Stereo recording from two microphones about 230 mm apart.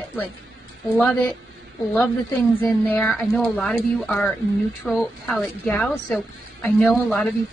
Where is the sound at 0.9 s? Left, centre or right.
Centre.